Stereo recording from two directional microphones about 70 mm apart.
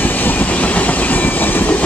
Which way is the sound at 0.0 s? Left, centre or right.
Left.